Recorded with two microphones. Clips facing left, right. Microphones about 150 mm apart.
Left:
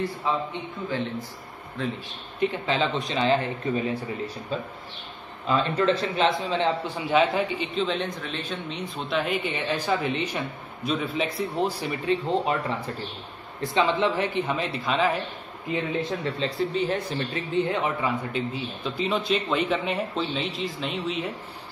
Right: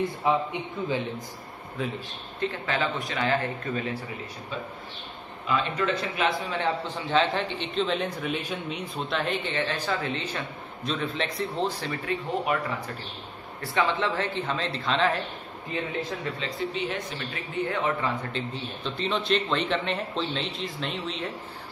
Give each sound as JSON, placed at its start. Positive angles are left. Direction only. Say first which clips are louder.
{"t": 0.0, "sound": "a man's voice", "louder": "right 2 dB", "side_deg": -15}
{"t": 2.4, "sound": "speech", "louder": "left 3 dB", "side_deg": 20}
{"t": 5.5, "sound": "speech", "louder": "left 4 dB", "side_deg": 30}
{"t": 7.1, "sound": "a man's voice", "louder": "left 3 dB", "side_deg": 10}
{"t": 9.1, "sound": "a man's voice", "louder": "left 2 dB", "side_deg": 5}
{"t": 11.9, "sound": "a man's voice", "louder": "left 5 dB", "side_deg": 25}
{"t": 16.3, "sound": "speech", "louder": "left 5 dB", "side_deg": 35}
{"t": 17.5, "sound": "a man's voice", "louder": "left 2 dB", "side_deg": 20}